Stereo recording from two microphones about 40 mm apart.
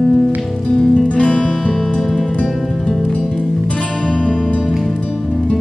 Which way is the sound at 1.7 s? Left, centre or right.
Centre.